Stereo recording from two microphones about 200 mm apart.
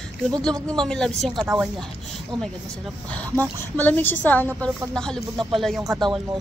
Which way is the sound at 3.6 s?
10° left (ahead or behind).